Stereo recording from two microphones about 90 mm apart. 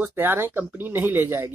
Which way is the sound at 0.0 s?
25° right (ahead or behind).